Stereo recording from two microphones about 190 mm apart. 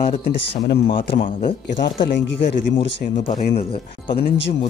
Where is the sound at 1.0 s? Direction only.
50° left (ahead or behind).